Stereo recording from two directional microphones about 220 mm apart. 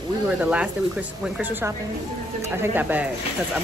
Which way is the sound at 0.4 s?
5° right (ahead or behind).